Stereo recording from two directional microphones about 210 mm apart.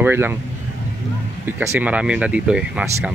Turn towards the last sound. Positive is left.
turn(degrees=-5)  # may be behind; listen again after turning